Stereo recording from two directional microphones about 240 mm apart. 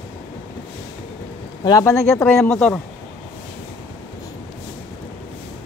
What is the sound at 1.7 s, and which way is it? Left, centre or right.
Speech, centre.